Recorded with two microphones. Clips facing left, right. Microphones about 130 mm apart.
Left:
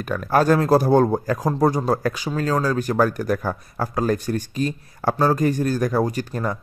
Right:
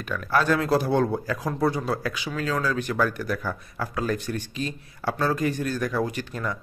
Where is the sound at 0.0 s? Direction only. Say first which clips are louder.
Left 5 dB; 45° left (ahead or behind).